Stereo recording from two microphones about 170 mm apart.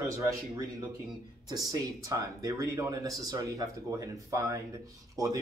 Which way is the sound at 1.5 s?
20° right (ahead or behind).